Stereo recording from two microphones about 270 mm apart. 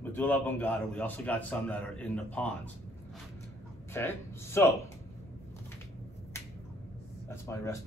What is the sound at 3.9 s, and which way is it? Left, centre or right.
Speech, centre.